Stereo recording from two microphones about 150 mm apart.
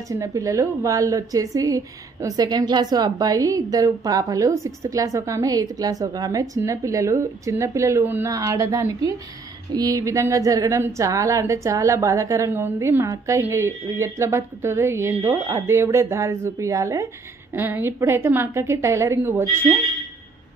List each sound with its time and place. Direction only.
0.1 s a woman's voice: 20° right (ahead or behind)